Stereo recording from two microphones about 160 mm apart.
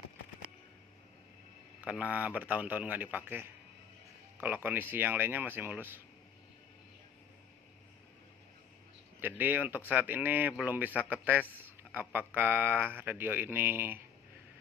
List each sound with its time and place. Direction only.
1.8 s a man's voice: 10° right (ahead or behind)
9.2 s a man's voice: 10° right (ahead or behind)